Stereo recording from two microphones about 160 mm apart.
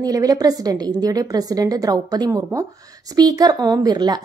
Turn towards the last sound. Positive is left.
turn(degrees=-25)  # may be behind; listen again after turning